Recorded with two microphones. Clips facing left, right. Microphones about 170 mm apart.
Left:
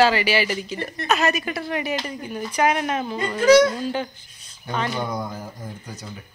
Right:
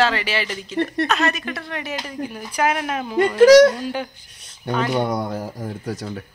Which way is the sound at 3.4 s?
85° right.